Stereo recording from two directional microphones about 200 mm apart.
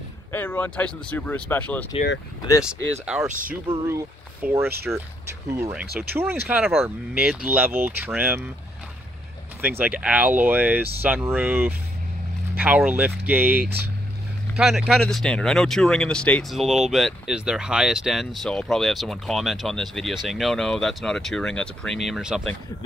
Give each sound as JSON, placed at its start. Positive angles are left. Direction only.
{"t": 0.3, "sound": "speech", "side_deg": 10}
{"t": 3.3, "sound": "speech", "side_deg": -40}
{"t": 3.8, "sound": "speech", "side_deg": -10}
{"t": 9.6, "sound": "speech", "side_deg": -10}